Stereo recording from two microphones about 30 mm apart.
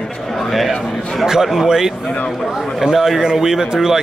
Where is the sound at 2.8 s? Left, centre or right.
Centre.